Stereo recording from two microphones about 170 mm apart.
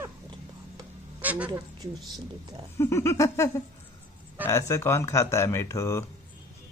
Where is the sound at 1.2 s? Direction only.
10° right (ahead or behind).